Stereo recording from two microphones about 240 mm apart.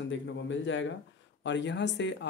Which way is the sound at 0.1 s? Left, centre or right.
Left.